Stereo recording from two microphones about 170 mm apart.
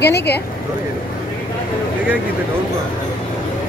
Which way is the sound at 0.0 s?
75° left (ahead or behind).